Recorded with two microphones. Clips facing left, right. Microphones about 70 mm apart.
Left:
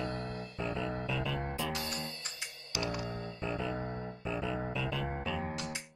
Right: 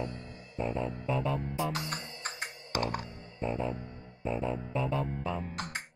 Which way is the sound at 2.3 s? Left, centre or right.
Right.